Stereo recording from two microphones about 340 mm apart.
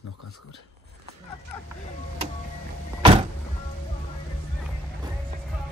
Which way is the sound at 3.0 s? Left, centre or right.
Centre.